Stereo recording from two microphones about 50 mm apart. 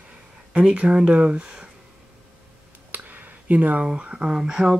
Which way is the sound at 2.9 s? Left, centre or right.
Right.